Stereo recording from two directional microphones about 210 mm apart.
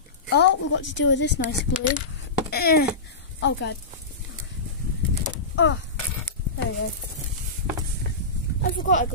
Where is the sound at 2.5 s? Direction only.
45° left (ahead or behind).